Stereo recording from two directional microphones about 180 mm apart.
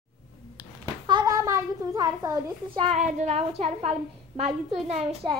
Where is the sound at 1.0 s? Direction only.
25° right (ahead or behind).